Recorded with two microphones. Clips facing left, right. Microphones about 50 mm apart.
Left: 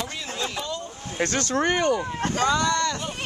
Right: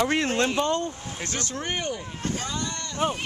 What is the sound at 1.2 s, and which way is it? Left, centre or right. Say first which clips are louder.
Speech: left 9 dB; left.